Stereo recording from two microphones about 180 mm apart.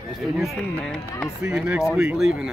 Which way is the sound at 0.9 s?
Centre (ahead or behind).